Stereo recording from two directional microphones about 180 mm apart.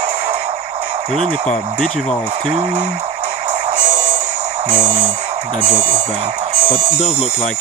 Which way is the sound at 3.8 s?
45° right (ahead or behind).